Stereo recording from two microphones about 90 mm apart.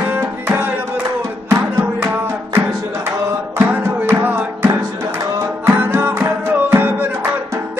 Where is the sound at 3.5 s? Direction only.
25° right (ahead or behind).